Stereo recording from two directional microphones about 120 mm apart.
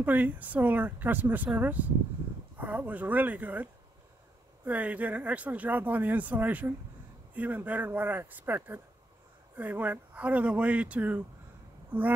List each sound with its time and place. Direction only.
0.0 s speech: 15° right (ahead or behind)
4.6 s speech: 10° right (ahead or behind)
11.9 s a sound: 15° right (ahead or behind)